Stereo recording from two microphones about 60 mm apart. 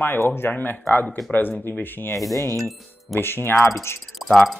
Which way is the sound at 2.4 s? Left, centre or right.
Right.